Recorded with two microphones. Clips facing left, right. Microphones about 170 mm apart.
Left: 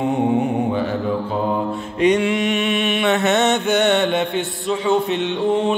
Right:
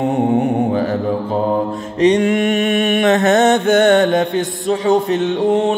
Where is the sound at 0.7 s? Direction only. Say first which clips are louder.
Right 3 dB; 40° right (ahead or behind).